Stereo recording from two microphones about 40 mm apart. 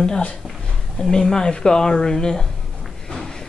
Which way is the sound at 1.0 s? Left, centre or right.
Centre.